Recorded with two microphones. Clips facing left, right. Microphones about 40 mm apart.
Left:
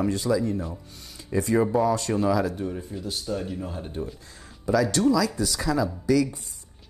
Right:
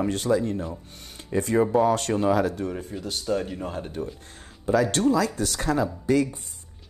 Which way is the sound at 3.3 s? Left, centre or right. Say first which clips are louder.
Right 4 dB; right.